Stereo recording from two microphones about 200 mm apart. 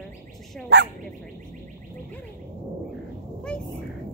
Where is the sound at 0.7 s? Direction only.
60° right (ahead or behind).